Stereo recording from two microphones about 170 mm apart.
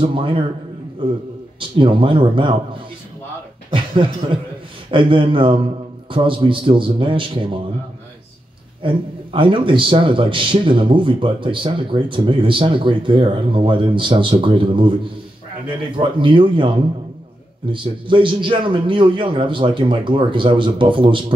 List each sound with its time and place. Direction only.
0.0 s a man's voice: 30° right (ahead or behind)
1.6 s a man's voice: 30° right (ahead or behind)
3.7 s a man's voice: 30° right (ahead or behind)
8.8 s a man's voice: 30° right (ahead or behind)
16.0 s a man's voice: 30° right (ahead or behind)